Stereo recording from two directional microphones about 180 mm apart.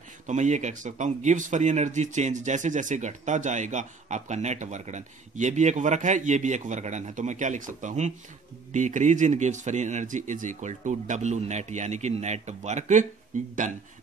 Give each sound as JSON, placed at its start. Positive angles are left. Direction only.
{"t": 0.3, "sound": "speech", "side_deg": -40}